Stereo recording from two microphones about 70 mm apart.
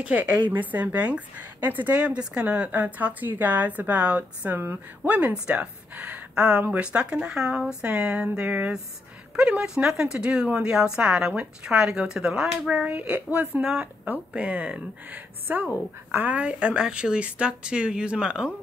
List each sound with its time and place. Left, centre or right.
0.0 s a woman's voice: right